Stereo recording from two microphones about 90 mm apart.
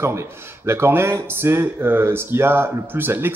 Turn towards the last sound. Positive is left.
turn(degrees=-25)  # may be behind; listen again after turning